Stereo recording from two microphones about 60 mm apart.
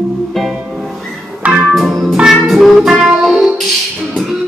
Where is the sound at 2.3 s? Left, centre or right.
Centre.